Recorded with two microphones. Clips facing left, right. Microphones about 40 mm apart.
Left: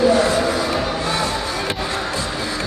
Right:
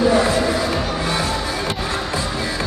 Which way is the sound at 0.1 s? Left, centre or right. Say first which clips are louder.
Even; centre.